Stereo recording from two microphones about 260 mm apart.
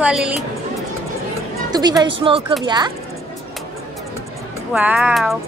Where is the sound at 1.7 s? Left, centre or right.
Centre.